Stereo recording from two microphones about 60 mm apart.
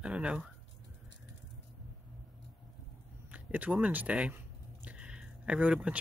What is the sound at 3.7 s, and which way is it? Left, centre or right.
Speech, right.